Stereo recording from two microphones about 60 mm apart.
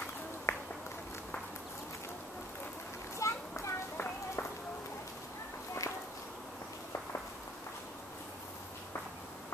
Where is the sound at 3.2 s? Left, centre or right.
Left.